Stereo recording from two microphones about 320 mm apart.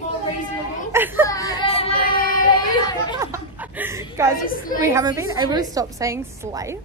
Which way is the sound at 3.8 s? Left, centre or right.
Centre.